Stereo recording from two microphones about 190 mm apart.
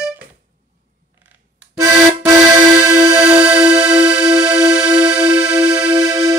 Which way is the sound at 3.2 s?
5° right (ahead or behind).